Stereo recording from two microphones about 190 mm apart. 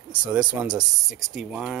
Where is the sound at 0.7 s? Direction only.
20° right (ahead or behind).